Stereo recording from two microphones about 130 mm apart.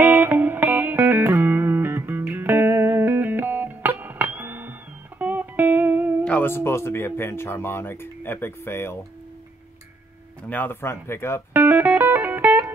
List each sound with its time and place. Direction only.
0.0 s music: 15° right (ahead or behind)
6.2 s speech: 15° left (ahead or behind)
10.5 s speech: 15° left (ahead or behind)
11.5 s music: 15° right (ahead or behind)